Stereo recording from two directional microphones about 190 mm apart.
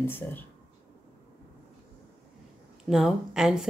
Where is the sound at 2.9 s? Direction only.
Centre (ahead or behind).